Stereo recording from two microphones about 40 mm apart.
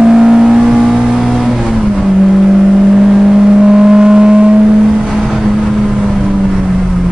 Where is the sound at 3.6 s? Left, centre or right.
Centre.